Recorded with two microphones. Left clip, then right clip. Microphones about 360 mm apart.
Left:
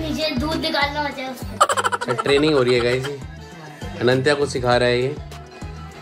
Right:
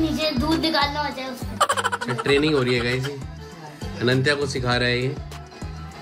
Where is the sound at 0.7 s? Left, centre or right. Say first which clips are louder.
Left 1 dB; right.